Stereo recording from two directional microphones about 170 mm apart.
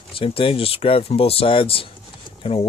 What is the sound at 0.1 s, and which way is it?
Speech, 30° left (ahead or behind).